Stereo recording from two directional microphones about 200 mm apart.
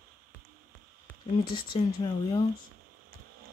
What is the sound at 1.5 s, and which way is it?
Speech, 20° left (ahead or behind).